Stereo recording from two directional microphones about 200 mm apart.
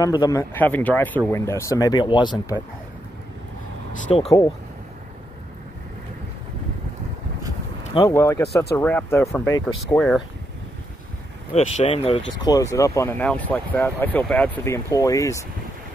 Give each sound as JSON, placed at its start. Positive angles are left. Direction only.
{"t": 0.0, "sound": "speech", "side_deg": 20}
{"t": 7.9, "sound": "speech", "side_deg": 15}
{"t": 11.5, "sound": "speech", "side_deg": 30}
{"t": 12.4, "sound": "speech", "side_deg": 15}